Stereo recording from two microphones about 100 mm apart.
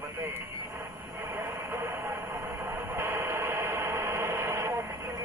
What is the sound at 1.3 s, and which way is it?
Train, 25° right (ahead or behind).